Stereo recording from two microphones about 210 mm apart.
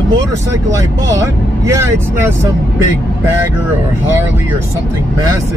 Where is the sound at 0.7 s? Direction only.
15° right (ahead or behind).